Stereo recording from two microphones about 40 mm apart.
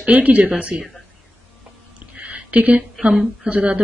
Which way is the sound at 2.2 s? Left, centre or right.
Right.